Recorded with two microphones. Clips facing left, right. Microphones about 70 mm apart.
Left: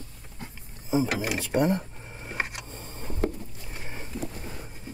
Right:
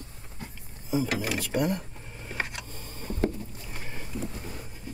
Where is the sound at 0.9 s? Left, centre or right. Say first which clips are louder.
Left 2 dB; left.